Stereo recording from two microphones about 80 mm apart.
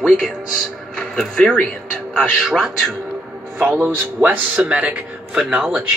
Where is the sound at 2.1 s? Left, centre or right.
Centre.